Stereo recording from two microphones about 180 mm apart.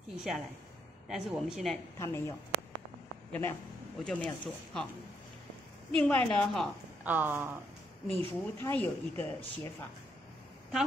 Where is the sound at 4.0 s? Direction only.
5° left (ahead or behind).